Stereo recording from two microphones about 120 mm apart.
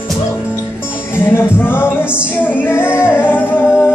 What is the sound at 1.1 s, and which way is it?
Music, 20° left (ahead or behind).